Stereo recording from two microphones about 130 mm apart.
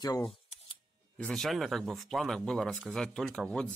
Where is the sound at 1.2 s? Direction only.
5° left (ahead or behind).